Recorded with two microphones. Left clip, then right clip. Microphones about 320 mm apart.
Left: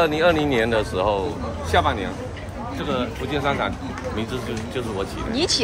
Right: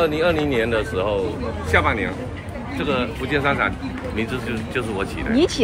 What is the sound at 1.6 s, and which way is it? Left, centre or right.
Speech, centre.